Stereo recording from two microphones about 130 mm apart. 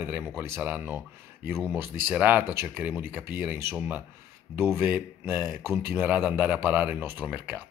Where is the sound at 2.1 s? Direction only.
15° right (ahead or behind).